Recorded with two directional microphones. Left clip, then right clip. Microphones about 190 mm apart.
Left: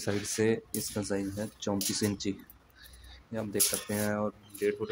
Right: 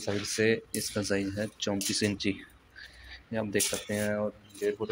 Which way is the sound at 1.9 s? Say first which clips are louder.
Right 3 dB; 15° left (ahead or behind).